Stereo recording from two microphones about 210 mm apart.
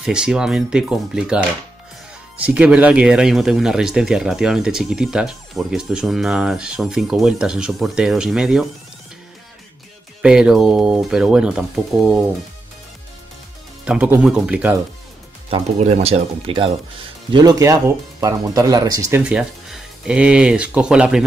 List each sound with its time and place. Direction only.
0.0 s speech: 5° right (ahead or behind)
10.2 s speech: 5° right (ahead or behind)
13.8 s speech: 5° right (ahead or behind)
15.5 s speech: 30° right (ahead or behind); by 21.2 s 5° right (ahead or behind)